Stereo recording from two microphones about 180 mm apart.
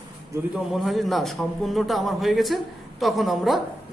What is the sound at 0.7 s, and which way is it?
A man's voice, centre (ahead or behind).